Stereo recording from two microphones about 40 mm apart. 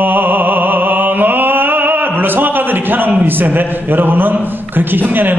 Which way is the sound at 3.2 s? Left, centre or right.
Right.